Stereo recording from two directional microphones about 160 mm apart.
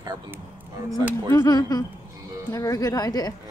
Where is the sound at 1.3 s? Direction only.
25° left (ahead or behind).